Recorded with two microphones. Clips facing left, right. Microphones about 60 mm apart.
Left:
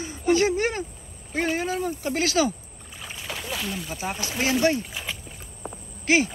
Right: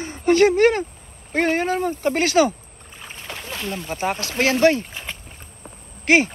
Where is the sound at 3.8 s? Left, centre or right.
Right.